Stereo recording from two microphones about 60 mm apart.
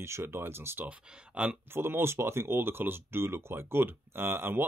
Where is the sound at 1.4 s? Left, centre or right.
Right.